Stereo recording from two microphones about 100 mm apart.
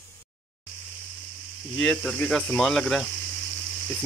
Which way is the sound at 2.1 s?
10° left (ahead or behind).